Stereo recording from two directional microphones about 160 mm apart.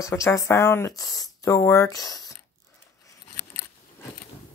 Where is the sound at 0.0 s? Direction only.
20° left (ahead or behind).